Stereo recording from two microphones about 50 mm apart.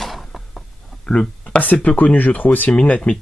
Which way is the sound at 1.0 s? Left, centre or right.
Centre.